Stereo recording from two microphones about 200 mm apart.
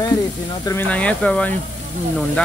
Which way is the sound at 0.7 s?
10° left (ahead or behind).